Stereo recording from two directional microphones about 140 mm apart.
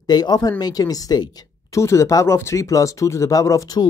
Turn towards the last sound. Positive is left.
turn(degrees=25)  # may be behind; listen again after turning